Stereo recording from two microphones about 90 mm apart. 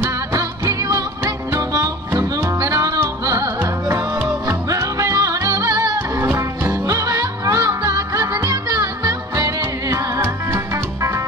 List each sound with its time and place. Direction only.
0.0 s music: 35° right (ahead or behind)
4.5 s music: 40° right (ahead or behind)
6.1 s music: 30° right (ahead or behind)